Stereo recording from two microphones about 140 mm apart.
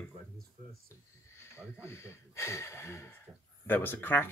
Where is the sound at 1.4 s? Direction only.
20° left (ahead or behind).